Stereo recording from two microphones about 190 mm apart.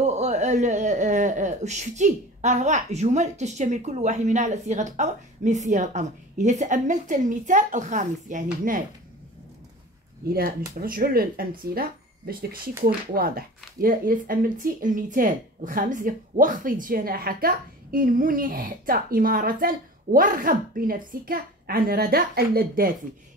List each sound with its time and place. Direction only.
0.0 s speech: 35° right (ahead or behind)
10.2 s speech: 50° right (ahead or behind)